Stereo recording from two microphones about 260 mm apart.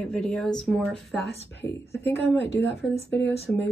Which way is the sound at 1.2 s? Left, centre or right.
Left.